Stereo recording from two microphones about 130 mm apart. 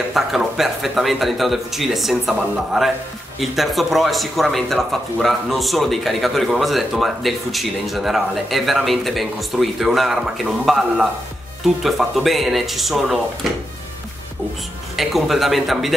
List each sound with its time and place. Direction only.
0.1 s speech: centre (ahead or behind)
15.0 s speech: centre (ahead or behind)